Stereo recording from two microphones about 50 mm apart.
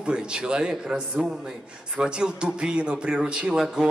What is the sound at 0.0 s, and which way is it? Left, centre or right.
A man's voice, centre.